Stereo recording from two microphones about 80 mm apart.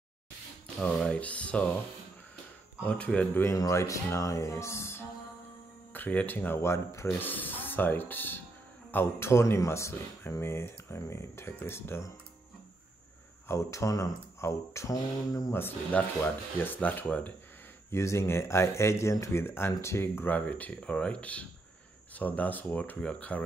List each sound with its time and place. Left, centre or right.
0.8 s speech: centre
2.8 s speech: centre
3.5 s speech: left
5.9 s speech: left
7.2 s speech: left
13.5 s speech: left
15.9 s speech: left
17.9 s speech: left; by 23.4 s centre